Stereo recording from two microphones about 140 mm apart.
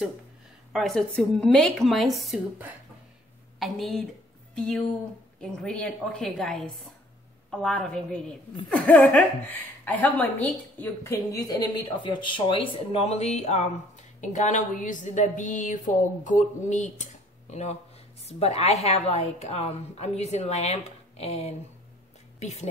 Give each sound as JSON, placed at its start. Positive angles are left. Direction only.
{"t": 0.7, "sound": "a woman's voice", "side_deg": 0}
{"t": 3.5, "sound": "speech", "side_deg": 0}
{"t": 5.4, "sound": "a woman's voice", "side_deg": 5}
{"t": 11.1, "sound": "speech", "side_deg": 25}